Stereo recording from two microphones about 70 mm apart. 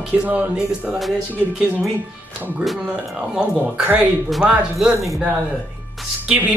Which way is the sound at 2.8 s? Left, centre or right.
Centre.